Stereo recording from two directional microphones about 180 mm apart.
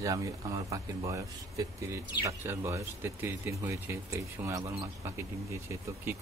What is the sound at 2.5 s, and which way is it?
Speech, 15° right (ahead or behind).